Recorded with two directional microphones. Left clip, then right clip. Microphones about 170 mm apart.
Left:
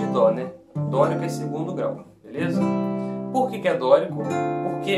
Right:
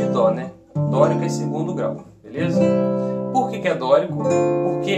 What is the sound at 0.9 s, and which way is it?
Speech, 5° left (ahead or behind).